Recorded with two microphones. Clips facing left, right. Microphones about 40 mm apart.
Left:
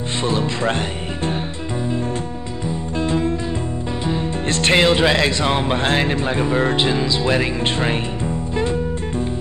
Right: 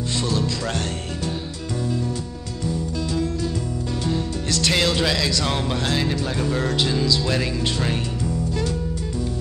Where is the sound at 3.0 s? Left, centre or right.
Left.